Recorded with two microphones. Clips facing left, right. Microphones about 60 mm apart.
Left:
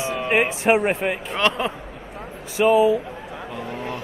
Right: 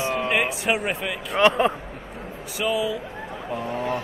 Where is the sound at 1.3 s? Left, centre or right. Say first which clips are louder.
Right 6 dB; centre.